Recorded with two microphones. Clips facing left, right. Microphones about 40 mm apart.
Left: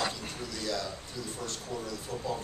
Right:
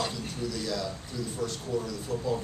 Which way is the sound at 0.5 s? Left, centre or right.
Centre.